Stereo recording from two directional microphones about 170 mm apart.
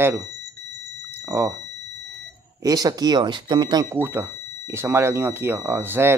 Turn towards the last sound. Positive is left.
turn(degrees=-15)  # may be behind; listen again after turning